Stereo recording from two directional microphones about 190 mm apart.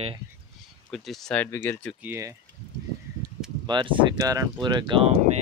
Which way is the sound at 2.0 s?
15° right (ahead or behind).